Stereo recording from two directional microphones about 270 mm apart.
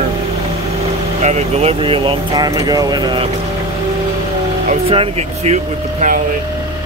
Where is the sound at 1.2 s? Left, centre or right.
Right.